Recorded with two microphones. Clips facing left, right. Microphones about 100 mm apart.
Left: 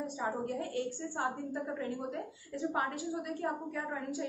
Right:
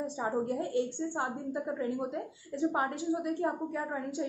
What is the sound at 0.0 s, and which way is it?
A woman's voice, 25° right (ahead or behind).